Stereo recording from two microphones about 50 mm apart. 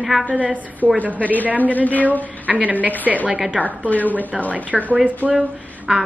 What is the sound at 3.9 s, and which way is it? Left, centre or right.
Speech, left.